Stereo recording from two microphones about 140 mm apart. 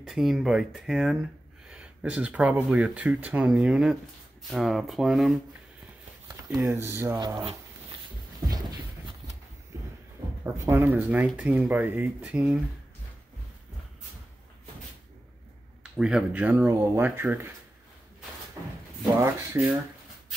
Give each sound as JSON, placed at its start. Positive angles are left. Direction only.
{"t": 0.0, "sound": "speech", "side_deg": -5}
{"t": 6.5, "sound": "speech", "side_deg": -20}
{"t": 9.7, "sound": "a sound", "side_deg": -15}
{"t": 10.4, "sound": "speech", "side_deg": -15}
{"t": 15.8, "sound": "speech", "side_deg": -5}
{"t": 19.1, "sound": "speech", "side_deg": -20}